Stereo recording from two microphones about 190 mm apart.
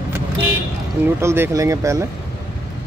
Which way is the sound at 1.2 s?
15° right (ahead or behind).